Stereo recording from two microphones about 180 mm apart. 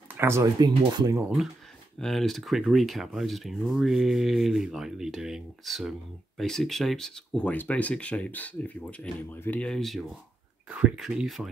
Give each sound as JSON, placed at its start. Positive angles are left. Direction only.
{"t": 0.1, "sound": "speech", "side_deg": -15}
{"t": 2.0, "sound": "speech", "side_deg": 0}